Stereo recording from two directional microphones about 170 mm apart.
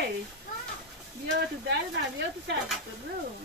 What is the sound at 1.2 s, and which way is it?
Speech, 75° right (ahead or behind).